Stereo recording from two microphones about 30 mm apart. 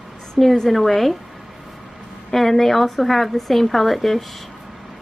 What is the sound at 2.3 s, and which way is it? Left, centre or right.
A woman's voice, centre.